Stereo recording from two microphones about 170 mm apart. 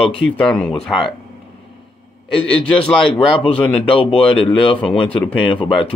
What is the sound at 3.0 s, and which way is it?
Speech, 30° left (ahead or behind).